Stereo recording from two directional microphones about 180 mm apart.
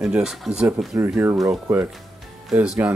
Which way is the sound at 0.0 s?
5° right (ahead or behind).